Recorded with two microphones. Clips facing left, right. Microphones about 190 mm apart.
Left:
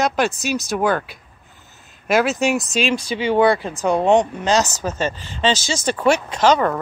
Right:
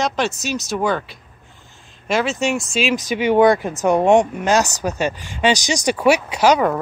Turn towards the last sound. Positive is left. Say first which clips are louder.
# right 1 dB
turn(degrees=-10)  # may be behind; listen again after turning